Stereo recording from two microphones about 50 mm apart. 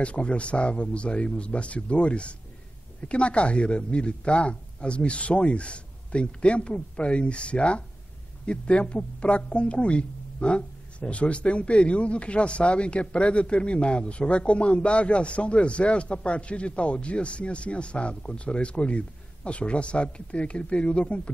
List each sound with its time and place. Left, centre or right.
0.0 s speech: left